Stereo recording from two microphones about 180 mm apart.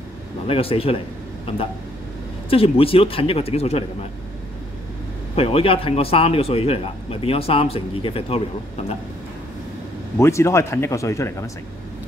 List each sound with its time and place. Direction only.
0.5 s a man's voice: 30° left (ahead or behind)
5.3 s a man's voice: 35° left (ahead or behind)
10.1 s speech: 15° left (ahead or behind)